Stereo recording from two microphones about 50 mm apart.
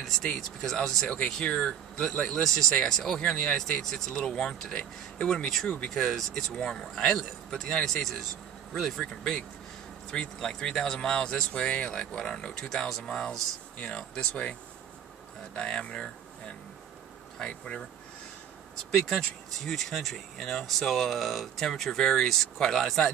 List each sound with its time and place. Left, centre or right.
0.0 s speech: centre
10.1 s speech: centre
15.5 s speech: centre
18.9 s speech: centre